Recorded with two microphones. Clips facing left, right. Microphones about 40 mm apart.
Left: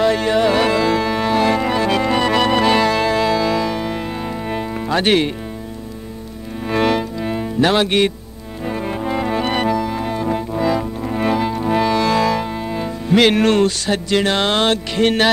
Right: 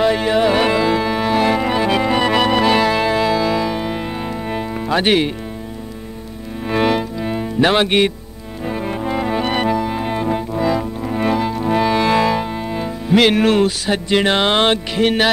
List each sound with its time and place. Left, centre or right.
0.0 s music: centre
6.7 s music: centre
7.6 s speech: centre
8.6 s music: centre
10.2 s music: centre
11.9 s music: centre
15.0 s speech: centre